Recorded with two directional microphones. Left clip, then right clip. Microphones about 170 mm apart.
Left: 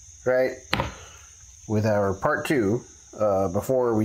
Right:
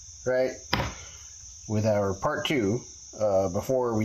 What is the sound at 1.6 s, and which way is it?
Speech, 35° left (ahead or behind).